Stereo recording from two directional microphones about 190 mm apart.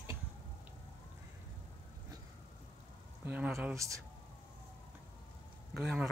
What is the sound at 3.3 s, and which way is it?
Speech, 5° right (ahead or behind).